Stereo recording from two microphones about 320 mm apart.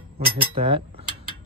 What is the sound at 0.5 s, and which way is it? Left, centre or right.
Speech, centre.